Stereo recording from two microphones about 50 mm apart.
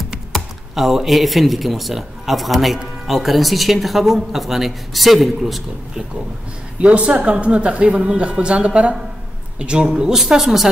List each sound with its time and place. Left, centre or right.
0.3 s speech: centre
6.8 s a woman's voice: right; by 10.7 s centre